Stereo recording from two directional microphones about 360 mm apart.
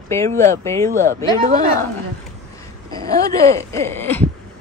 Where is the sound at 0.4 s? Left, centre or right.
Centre.